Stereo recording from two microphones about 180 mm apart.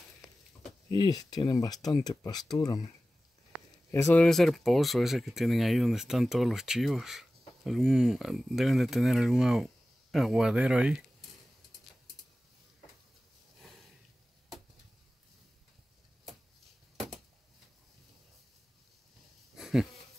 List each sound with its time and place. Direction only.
0.9 s speech: 20° left (ahead or behind)
3.9 s speech: 10° left (ahead or behind); by 11.2 s 5° right (ahead or behind)
13.6 s sniff: centre (ahead or behind)
19.5 s goat: centre (ahead or behind)